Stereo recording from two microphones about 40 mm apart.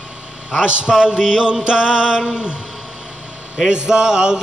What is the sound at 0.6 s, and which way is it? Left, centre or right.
Mantra, right.